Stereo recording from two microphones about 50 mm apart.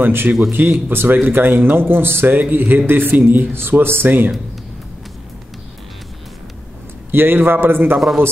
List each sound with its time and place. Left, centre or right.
0.0 s a man's voice: right
7.1 s a man's voice: right